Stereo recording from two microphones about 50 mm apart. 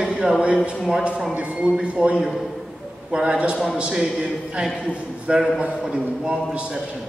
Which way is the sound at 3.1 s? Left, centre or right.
Right.